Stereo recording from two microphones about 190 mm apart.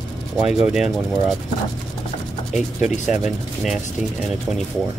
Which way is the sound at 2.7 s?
40° left (ahead or behind).